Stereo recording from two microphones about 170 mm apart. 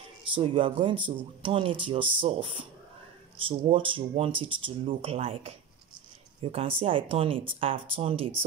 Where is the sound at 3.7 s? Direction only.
30° right (ahead or behind).